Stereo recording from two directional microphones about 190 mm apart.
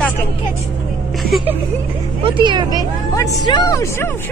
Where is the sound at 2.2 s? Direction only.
25° right (ahead or behind).